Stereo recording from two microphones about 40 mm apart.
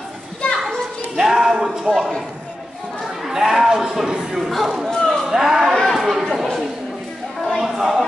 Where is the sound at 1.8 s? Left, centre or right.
Centre.